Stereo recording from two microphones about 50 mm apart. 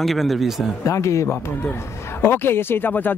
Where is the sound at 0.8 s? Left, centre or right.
Left.